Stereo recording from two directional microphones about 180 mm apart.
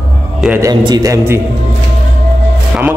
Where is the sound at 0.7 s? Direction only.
25° right (ahead or behind).